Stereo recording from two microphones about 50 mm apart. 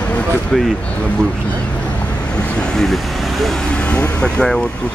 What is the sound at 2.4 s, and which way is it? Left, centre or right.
Vehicle, centre.